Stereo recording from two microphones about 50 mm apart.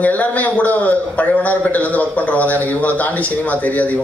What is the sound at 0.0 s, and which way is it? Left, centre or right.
A man's voice, left.